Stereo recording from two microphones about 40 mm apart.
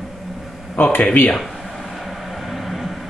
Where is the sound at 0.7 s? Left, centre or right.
Left.